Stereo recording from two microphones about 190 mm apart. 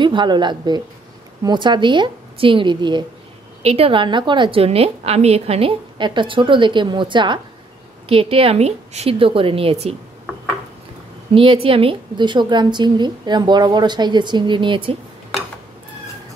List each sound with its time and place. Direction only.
0.0 s a woman's voice: 25° right (ahead or behind)
11.3 s a woman's voice: 30° right (ahead or behind)